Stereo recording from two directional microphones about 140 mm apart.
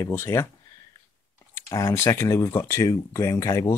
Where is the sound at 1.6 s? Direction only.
20° left (ahead or behind).